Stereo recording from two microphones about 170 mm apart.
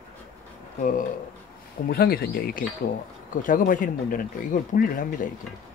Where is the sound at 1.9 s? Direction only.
65° left (ahead or behind).